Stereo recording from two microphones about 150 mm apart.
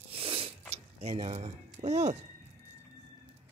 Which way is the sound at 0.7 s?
45° right (ahead or behind).